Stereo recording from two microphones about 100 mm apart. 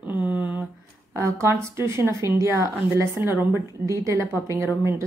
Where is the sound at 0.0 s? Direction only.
15° right (ahead or behind).